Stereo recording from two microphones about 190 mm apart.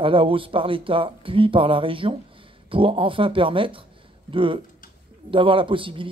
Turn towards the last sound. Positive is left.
turn(degrees=-25)  # may be behind; listen again after turning